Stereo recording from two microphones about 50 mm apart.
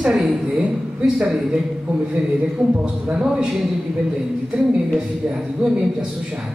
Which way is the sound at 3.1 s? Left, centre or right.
Centre.